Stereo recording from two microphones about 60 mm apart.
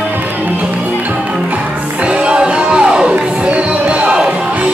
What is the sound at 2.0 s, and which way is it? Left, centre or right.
Music, centre.